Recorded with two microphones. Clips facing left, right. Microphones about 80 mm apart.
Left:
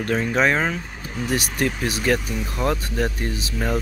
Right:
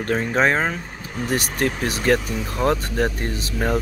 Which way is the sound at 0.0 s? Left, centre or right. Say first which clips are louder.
Right 1 dB; right.